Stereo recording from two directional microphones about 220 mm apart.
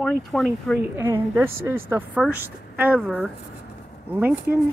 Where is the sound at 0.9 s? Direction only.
10° right (ahead or behind).